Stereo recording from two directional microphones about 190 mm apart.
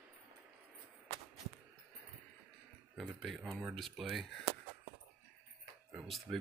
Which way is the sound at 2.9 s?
Centre (ahead or behind).